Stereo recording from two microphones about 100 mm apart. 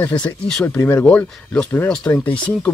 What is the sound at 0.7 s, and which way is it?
Speech, 20° left (ahead or behind).